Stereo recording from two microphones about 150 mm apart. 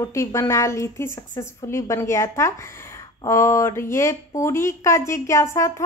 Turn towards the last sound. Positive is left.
turn(degrees=20)  # may be behind; listen again after turning